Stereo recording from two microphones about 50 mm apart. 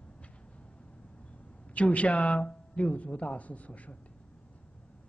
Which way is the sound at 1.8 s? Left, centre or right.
Left.